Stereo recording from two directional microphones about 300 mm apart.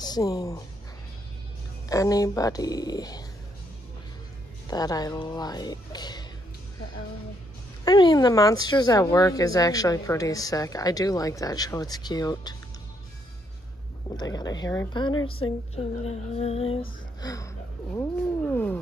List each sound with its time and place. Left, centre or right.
0.0 s a woman's voice: centre
1.9 s speech: centre
4.6 s speech: centre
7.8 s speech: centre
14.0 s speech: centre